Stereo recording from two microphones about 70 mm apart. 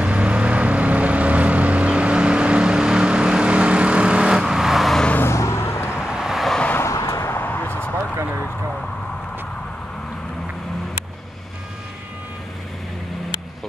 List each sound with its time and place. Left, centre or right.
0.0 s vehicle: centre
5.2 s vehicle: left
5.9 s vehicle: centre
6.8 s vehicle: left